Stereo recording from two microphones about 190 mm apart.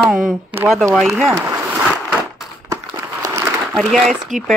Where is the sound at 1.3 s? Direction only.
15° right (ahead or behind).